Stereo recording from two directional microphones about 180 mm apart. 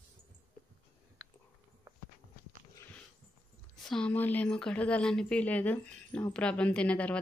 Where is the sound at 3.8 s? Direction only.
5° left (ahead or behind).